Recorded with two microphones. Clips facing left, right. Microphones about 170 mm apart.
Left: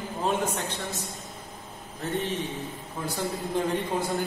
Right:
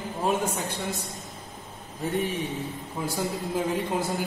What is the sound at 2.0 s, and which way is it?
A man's voice, 10° right (ahead or behind).